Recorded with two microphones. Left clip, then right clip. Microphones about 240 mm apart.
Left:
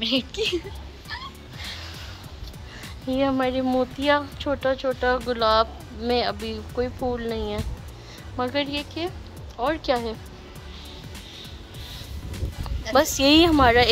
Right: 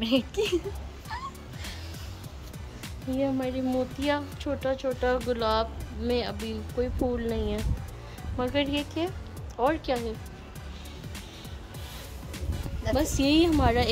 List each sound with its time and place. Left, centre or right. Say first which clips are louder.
0.0 s speech: left 2 dB; right
2.8 s speech: left 5 dB; centre
12.9 s speech: left 7 dB; centre